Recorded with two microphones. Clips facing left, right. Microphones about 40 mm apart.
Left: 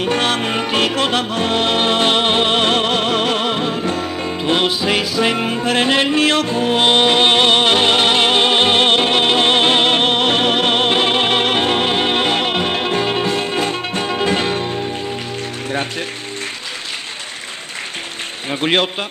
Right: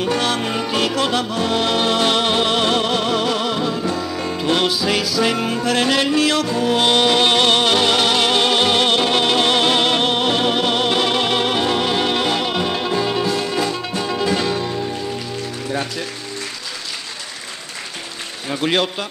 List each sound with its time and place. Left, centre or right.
0.0 s music: left
18.6 s a man's voice: left